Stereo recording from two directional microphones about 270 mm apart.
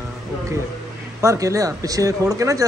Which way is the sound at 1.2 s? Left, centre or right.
Centre.